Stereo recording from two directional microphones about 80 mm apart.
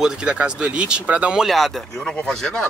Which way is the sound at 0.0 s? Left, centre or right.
Centre.